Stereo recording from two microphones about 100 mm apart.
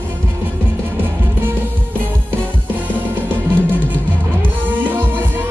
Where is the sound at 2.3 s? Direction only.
20° right (ahead or behind).